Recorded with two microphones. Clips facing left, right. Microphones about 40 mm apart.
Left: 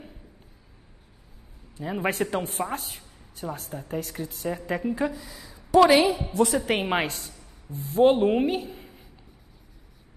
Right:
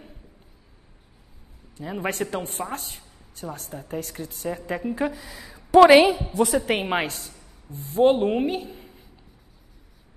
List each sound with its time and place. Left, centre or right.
1.8 s a woman's voice: centre
5.5 s a sound: centre
6.1 s a woman's voice: centre